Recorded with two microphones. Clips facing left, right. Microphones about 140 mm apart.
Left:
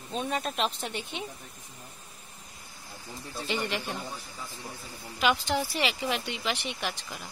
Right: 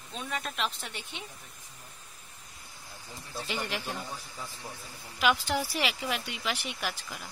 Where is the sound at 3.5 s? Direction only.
Centre (ahead or behind).